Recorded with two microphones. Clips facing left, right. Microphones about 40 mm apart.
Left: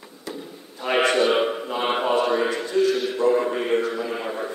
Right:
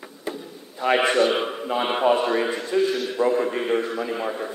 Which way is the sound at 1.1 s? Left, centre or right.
Centre.